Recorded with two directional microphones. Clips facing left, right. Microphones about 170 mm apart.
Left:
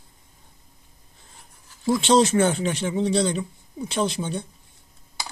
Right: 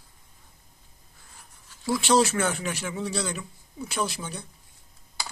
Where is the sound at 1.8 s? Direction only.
25° left (ahead or behind).